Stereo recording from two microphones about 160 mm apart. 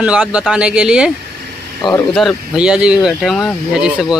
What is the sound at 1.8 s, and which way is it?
Speech, 25° left (ahead or behind).